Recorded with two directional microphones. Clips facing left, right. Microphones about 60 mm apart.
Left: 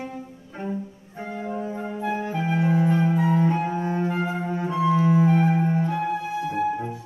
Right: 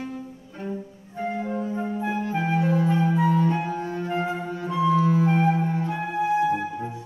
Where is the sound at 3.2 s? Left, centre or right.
Left.